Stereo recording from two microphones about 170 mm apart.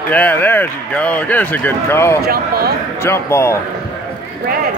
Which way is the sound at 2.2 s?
65° right (ahead or behind).